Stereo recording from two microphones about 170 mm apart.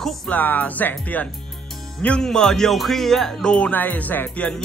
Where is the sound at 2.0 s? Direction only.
5° left (ahead or behind).